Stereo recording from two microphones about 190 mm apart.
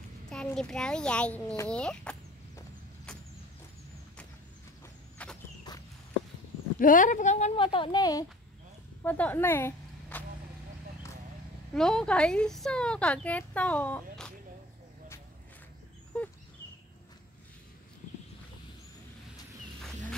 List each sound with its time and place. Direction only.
0.3 s speech: 5° left (ahead or behind)
3.1 s vehicle: 5° left (ahead or behind)
5.2 s walk: 5° left (ahead or behind)
5.7 s walk: 20° left (ahead or behind)
6.8 s a woman's voice: 45° left (ahead or behind); by 8.3 s 20° left (ahead or behind)
9.0 s speech: 10° left (ahead or behind)
11.7 s speech: 5° left (ahead or behind)